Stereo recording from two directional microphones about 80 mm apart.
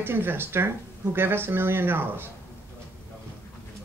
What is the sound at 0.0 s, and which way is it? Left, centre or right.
Speech, right.